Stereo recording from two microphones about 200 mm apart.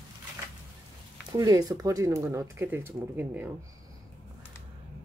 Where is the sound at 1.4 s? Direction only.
15° right (ahead or behind).